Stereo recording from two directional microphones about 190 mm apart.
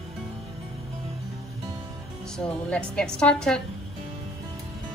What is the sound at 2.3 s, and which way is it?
A woman's voice, 5° left (ahead or behind).